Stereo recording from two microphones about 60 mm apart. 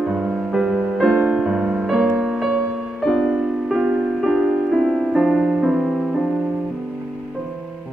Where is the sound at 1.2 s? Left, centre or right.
Centre.